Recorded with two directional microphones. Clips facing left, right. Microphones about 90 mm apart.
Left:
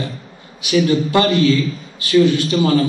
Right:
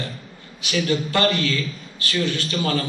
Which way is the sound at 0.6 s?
20° left (ahead or behind).